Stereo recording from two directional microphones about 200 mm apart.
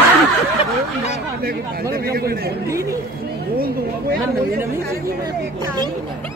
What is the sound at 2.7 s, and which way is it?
Speech, 15° right (ahead or behind).